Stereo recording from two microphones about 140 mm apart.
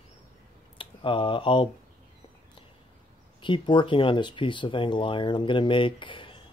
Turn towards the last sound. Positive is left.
turn(degrees=35)  # may be behind; listen again after turning